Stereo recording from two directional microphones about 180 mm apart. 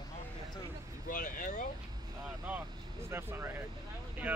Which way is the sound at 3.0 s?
15° right (ahead or behind).